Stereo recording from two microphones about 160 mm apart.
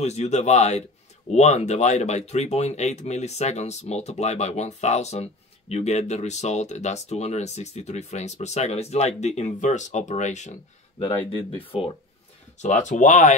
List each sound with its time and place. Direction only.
0.0 s speech: 45° left (ahead or behind)
11.6 s speech: 35° left (ahead or behind)
12.5 s speech: 45° left (ahead or behind)